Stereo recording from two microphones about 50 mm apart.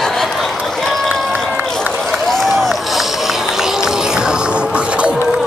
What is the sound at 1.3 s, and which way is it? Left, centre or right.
Run, right.